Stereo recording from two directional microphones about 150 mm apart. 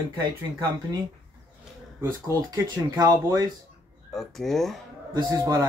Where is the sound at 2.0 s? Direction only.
25° right (ahead or behind).